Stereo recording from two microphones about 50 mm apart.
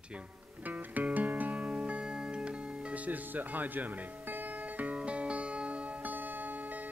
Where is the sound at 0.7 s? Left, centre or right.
Right.